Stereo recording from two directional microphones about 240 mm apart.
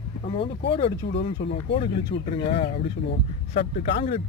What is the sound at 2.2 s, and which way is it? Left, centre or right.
Speech, left.